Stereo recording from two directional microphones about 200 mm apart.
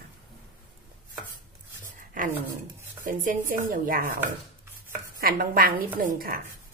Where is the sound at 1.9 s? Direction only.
40° right (ahead or behind).